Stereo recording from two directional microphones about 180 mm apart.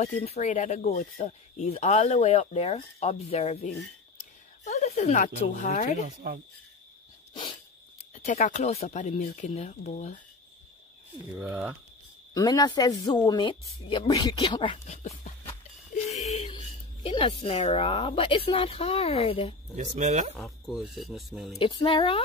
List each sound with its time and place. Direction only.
0.0 s speech: 35° left (ahead or behind)
8.1 s speech: 45° left (ahead or behind)
11.3 s speech: 5° right (ahead or behind)
12.4 s a woman's voice: 20° left (ahead or behind); by 15.3 s 35° left (ahead or behind)
16.1 s a sound: 35° left (ahead or behind)
16.5 s speech: 30° left (ahead or behind)
19.8 s speech: 40° right (ahead or behind)
20.3 s speech: centre (ahead or behind)
21.5 s a woman's voice: 30° left (ahead or behind)